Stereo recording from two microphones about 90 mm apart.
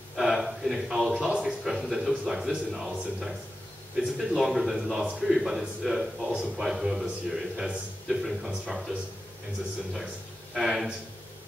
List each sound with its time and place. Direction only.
0.1 s a sound: 5° right (ahead or behind)
1.1 s a man's voice: 10° right (ahead or behind)
10.5 s a man's voice: centre (ahead or behind)